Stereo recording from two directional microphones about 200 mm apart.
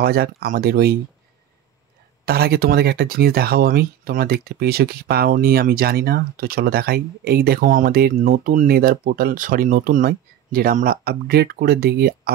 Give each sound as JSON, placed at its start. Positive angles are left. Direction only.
{"t": 0.0, "sound": "speech", "side_deg": -50}
{"t": 2.2, "sound": "speech", "side_deg": -50}